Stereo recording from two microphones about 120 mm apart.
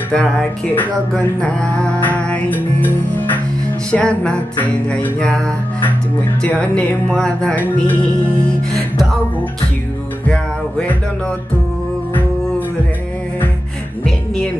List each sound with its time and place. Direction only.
0.1 s speech: 5° left (ahead or behind)
6.4 s speech: 10° left (ahead or behind)
10.2 s music: 10° left (ahead or behind)
12.1 s music: 15° left (ahead or behind)
14.0 s music: 5° left (ahead or behind)